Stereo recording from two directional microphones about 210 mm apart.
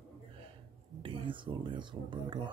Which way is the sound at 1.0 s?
25° right (ahead or behind).